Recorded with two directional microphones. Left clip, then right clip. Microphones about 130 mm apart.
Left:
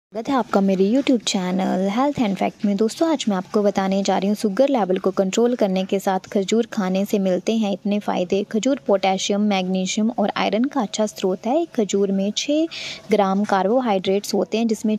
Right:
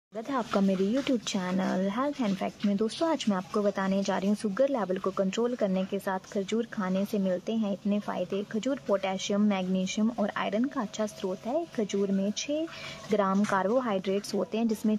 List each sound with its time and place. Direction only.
0.3 s a woman's voice: 35° left (ahead or behind)